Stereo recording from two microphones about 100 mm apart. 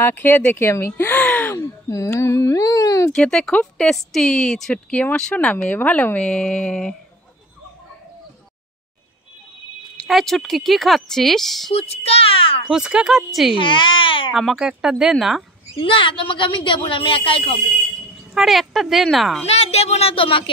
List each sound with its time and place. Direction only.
0.0 s speech: 20° left (ahead or behind)
1.5 s a sound: 30° left (ahead or behind)
3.1 s speech: 10° left (ahead or behind)
10.0 s speech: centre (ahead or behind)
11.7 s a sound: 90° left; by 12.6 s 65° left (ahead or behind)
12.6 s speech: 5° right (ahead or behind)
13.5 s a woman's voice: 55° left (ahead or behind)
14.3 s speech: 5° right (ahead or behind)
15.7 s a woman's voice: 60° left (ahead or behind)
18.3 s speech: centre (ahead or behind)
19.4 s a woman's voice: 90° left; by 20.4 s 65° left (ahead or behind)